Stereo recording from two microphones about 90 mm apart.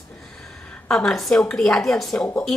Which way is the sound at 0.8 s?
5° left (ahead or behind).